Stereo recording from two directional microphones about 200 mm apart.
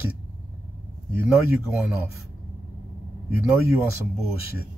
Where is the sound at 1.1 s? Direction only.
10° right (ahead or behind).